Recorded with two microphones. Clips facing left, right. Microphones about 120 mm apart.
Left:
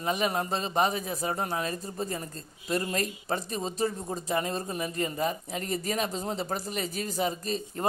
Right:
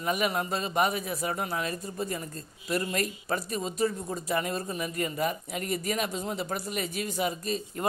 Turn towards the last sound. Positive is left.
turn(degrees=35)  # may be behind; listen again after turning